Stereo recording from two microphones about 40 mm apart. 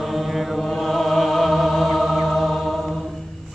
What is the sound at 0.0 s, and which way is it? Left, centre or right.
Chant, centre.